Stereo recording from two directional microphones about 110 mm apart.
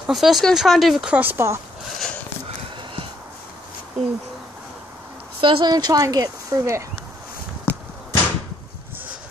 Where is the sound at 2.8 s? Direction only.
55° right (ahead or behind).